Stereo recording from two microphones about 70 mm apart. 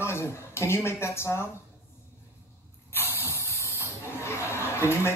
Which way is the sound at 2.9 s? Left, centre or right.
Left.